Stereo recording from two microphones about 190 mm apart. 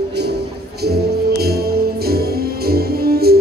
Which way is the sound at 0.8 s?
55° right (ahead or behind).